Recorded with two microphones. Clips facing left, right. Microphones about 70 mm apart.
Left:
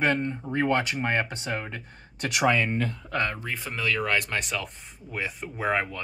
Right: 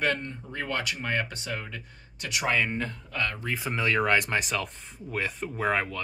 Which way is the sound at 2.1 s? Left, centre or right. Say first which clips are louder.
Left 4 dB; left.